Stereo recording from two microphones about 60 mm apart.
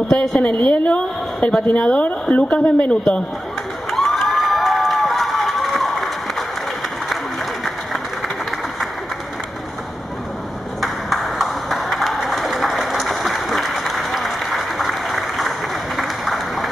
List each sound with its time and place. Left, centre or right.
0.4 s a woman's voice: left
3.9 s crowd: centre
10.8 s a sound: centre
16.0 s applause: centre